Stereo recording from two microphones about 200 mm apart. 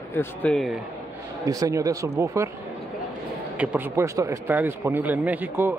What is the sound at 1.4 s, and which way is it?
A man's voice, 15° right (ahead or behind).